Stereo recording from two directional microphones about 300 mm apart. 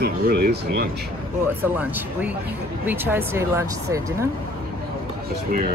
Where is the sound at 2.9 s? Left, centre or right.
Centre.